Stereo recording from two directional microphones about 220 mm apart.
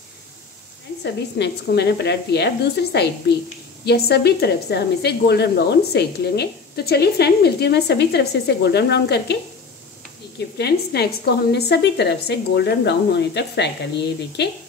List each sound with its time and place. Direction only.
1.0 s a woman's voice: 50° left (ahead or behind)
10.6 s a woman's voice: 45° left (ahead or behind)